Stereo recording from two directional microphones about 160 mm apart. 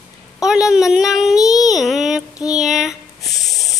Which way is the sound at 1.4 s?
20° left (ahead or behind).